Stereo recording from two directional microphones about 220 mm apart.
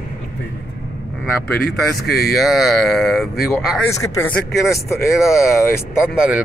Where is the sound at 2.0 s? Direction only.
45° left (ahead or behind).